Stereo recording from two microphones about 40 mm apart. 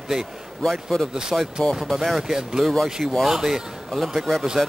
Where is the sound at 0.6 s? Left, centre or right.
Centre.